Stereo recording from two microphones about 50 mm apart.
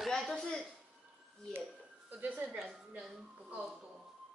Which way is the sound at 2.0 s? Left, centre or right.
Right.